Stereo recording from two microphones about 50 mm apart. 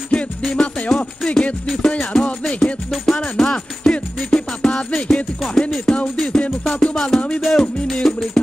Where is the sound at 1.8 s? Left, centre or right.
Left.